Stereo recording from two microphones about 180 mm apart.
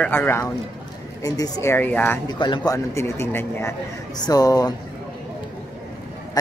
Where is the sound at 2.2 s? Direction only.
25° left (ahead or behind).